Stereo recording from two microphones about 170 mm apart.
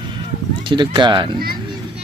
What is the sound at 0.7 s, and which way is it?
Speech, 25° right (ahead or behind).